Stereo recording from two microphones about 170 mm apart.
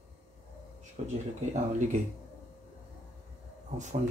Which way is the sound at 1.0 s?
40° right (ahead or behind).